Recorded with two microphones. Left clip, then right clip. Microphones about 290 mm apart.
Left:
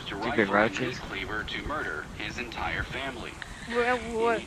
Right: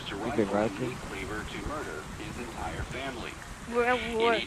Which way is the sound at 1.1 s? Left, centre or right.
Left.